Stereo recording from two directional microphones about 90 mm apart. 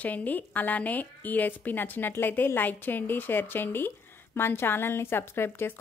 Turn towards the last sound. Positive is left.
turn(degrees=25)  # may be behind; listen again after turning